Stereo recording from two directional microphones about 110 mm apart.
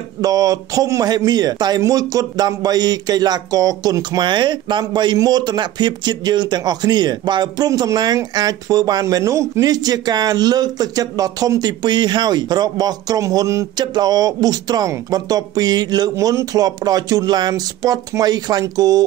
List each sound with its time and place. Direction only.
0.2 s speech: 30° right (ahead or behind)